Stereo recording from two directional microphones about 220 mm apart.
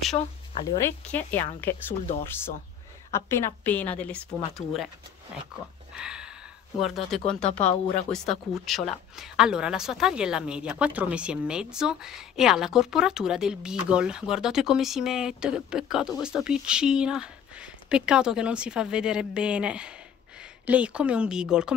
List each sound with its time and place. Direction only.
0.1 s speech: 25° left (ahead or behind)
0.7 s a woman's voice: 10° left (ahead or behind)
3.1 s a woman's voice: 10° left (ahead or behind)
5.9 s a sound: 5° right (ahead or behind)
6.8 s speech: centre (ahead or behind)